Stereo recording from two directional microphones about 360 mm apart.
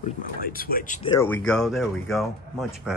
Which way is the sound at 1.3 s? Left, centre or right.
Centre.